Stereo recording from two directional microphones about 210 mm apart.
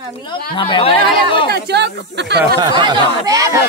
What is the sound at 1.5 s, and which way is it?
Speech, 50° right (ahead or behind).